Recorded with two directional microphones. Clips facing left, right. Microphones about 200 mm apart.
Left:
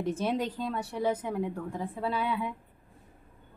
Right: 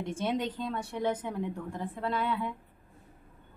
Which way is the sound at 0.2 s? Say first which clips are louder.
Left 1 dB; 5° left (ahead or behind).